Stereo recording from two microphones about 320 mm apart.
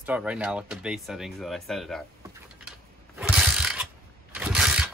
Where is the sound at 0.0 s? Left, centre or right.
Centre.